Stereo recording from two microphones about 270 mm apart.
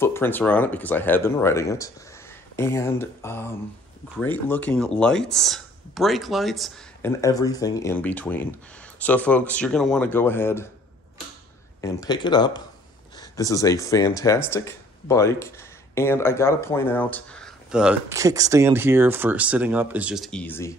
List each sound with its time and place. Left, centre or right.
0.0 s speech: centre
11.8 s speech: centre